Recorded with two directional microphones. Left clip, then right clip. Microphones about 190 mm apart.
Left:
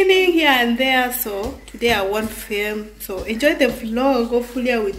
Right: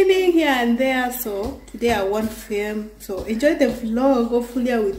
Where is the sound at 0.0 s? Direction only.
20° right (ahead or behind).